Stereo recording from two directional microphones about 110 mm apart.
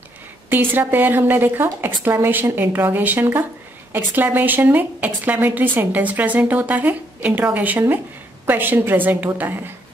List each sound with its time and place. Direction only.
0.5 s a woman's voice: 20° right (ahead or behind)